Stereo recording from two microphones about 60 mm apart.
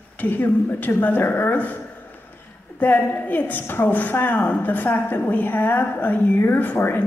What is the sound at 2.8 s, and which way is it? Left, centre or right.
A woman's voice, left.